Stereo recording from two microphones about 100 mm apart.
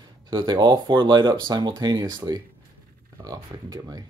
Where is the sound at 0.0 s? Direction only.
50° right (ahead or behind).